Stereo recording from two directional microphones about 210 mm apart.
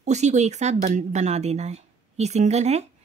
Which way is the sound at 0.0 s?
35° right (ahead or behind).